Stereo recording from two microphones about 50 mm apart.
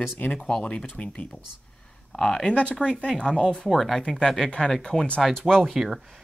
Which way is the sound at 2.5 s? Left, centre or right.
Left.